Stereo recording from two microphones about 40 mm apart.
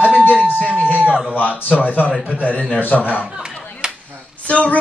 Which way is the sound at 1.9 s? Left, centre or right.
Left.